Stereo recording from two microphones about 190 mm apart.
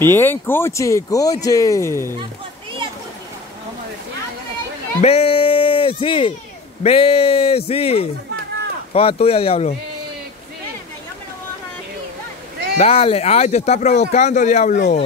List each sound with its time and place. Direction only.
0.0 s speech: 10° left (ahead or behind)
5.0 s speech: 30° left (ahead or behind)
12.7 s speech: 35° left (ahead or behind)